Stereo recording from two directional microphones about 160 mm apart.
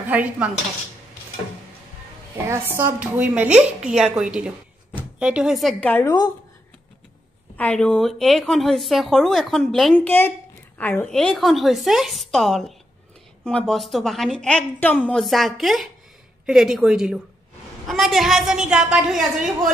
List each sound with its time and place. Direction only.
0.0 s dishes: 10° right (ahead or behind)
2.4 s a woman's voice: 15° right (ahead or behind); by 6.0 s 10° left (ahead or behind)
6.0 s a woman's voice: 25° left (ahead or behind)
7.5 s a woman's voice: 5° left (ahead or behind)